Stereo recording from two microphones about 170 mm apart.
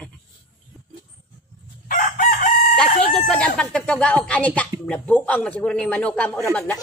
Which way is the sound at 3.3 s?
5° left (ahead or behind).